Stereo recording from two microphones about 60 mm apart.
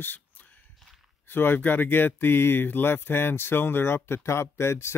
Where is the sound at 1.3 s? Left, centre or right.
Left.